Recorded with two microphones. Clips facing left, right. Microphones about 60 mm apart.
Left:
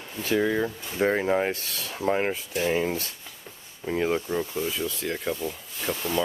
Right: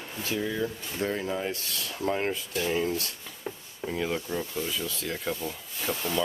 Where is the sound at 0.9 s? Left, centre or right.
Left.